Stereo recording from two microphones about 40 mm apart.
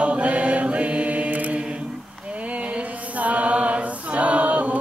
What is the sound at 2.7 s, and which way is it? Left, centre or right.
A capella, right.